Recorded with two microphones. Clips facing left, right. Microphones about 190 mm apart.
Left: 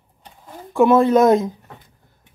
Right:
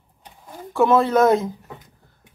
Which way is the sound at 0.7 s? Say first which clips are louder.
Left 3 dB; 15° left (ahead or behind).